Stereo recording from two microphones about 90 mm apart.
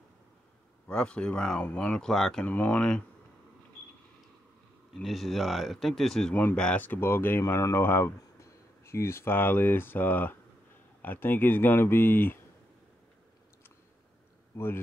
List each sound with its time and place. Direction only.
0.8 s speech: 10° left (ahead or behind)
2.4 s speech: 15° left (ahead or behind)
5.0 s speech: centre (ahead or behind)
6.3 s speech: 15° left (ahead or behind)